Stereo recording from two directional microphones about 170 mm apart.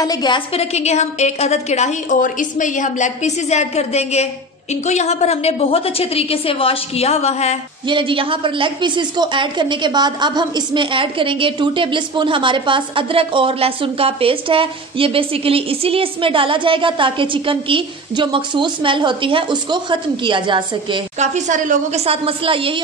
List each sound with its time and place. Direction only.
0.0 s a woman's voice: 25° left (ahead or behind)
0.6 s a woman's voice: 40° left (ahead or behind)
7.9 s a woman's voice: 30° right (ahead or behind)
21.2 s a woman's voice: 45° right (ahead or behind)